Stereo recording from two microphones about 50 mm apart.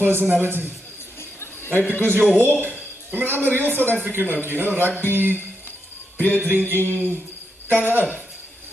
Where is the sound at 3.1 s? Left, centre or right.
Right.